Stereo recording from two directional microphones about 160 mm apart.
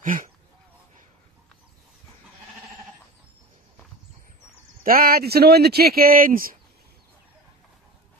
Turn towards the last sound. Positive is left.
turn(degrees=-60)  # may be behind; listen again after turning